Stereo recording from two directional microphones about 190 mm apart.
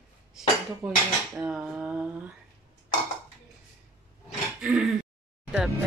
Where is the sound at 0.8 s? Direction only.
5° right (ahead or behind).